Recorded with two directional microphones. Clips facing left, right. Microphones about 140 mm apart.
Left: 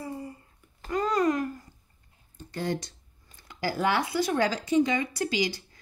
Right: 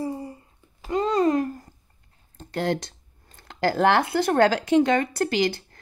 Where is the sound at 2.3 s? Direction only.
75° right (ahead or behind).